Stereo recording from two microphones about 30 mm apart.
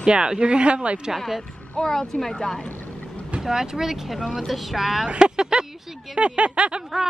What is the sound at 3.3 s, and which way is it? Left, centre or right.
Speech, centre.